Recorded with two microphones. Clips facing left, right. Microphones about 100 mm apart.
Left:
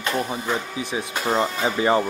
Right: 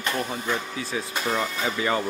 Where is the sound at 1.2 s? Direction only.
30° left (ahead or behind).